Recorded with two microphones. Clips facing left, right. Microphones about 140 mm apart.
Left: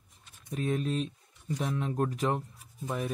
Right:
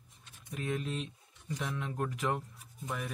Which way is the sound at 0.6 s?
35° left (ahead or behind).